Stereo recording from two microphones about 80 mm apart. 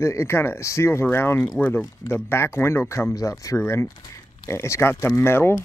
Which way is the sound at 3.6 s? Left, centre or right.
Left.